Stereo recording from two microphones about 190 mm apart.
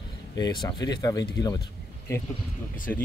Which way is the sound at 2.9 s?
10° left (ahead or behind).